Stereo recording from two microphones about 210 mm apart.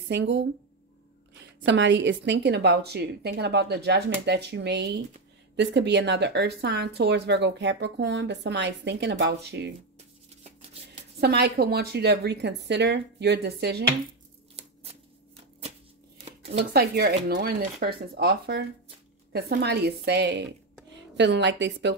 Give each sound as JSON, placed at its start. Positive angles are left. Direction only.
{"t": 0.1, "sound": "speech", "side_deg": -55}
{"t": 1.7, "sound": "speech", "side_deg": -60}
{"t": 11.1, "sound": "speech", "side_deg": -50}
{"t": 14.6, "sound": "scissors", "side_deg": -30}
{"t": 16.3, "sound": "shuffling cards", "side_deg": -30}
{"t": 16.7, "sound": "a woman's voice", "side_deg": -50}